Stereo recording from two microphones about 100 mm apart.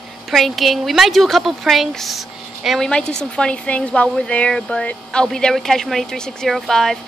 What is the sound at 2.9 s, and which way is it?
Speech, 10° left (ahead or behind).